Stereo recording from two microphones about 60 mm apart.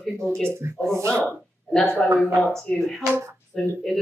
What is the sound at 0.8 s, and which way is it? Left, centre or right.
Speech, right.